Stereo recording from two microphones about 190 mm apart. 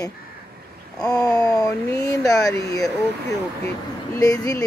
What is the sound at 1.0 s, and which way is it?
Speech, 20° left (ahead or behind).